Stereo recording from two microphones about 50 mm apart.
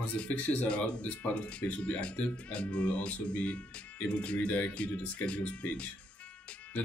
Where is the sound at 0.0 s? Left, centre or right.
Left.